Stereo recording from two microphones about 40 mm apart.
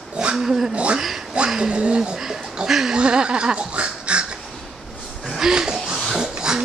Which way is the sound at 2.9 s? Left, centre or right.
Right.